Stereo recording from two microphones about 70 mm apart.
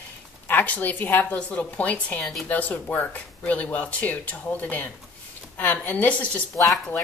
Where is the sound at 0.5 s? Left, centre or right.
Left.